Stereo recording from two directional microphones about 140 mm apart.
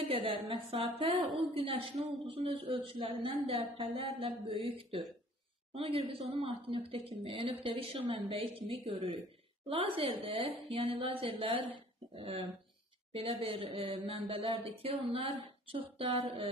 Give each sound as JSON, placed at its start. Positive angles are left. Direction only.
{"t": 0.1, "sound": "speech", "side_deg": -40}